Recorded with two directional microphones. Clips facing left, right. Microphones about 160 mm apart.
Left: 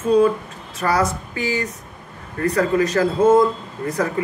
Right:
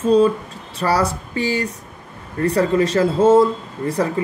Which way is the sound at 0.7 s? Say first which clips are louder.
Right 1 dB; 30° right (ahead or behind).